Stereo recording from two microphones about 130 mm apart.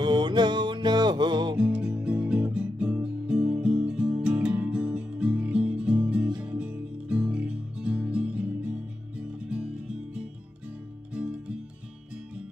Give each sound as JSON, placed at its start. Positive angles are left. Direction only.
{"t": 0.0, "sound": "music", "side_deg": -35}
{"t": 1.6, "sound": "music", "side_deg": -10}